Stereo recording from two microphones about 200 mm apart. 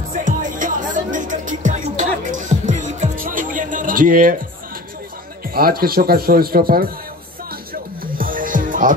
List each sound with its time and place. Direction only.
0.1 s music: 40° right (ahead or behind)
5.5 s speech: 50° right (ahead or behind)
8.2 s music: 45° right (ahead or behind)